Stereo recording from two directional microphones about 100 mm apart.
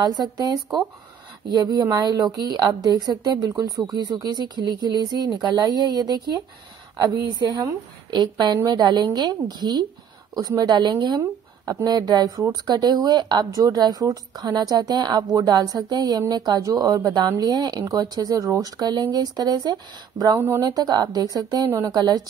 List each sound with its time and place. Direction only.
0.0 s a woman's voice: 45° right (ahead or behind)
20.3 s a woman's voice: 25° right (ahead or behind)
20.6 s a woman's voice: 40° right (ahead or behind)
21.9 s a woman's voice: 40° right (ahead or behind)